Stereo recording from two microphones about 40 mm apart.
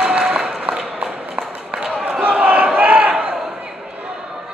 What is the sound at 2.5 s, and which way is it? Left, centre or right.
Battle cry, right.